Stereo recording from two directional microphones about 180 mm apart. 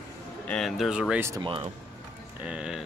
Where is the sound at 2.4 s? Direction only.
5° right (ahead or behind).